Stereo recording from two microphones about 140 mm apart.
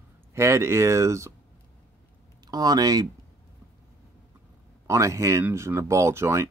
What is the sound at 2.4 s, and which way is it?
Speech, 30° right (ahead or behind).